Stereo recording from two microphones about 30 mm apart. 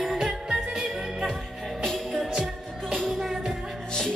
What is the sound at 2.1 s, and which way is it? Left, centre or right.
Music, centre.